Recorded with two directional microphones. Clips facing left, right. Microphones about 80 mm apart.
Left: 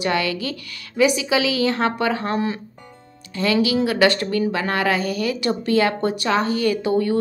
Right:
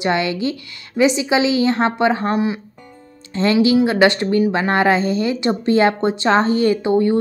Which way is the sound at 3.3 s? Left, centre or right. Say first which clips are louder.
Right 5 dB; right.